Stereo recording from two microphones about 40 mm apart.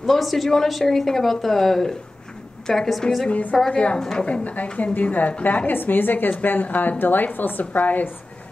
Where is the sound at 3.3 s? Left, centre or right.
Left.